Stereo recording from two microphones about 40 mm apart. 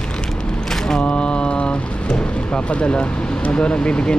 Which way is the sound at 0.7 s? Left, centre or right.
Centre.